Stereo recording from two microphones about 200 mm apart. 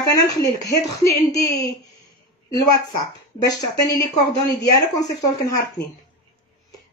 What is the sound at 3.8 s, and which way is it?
Speech, 15° left (ahead or behind).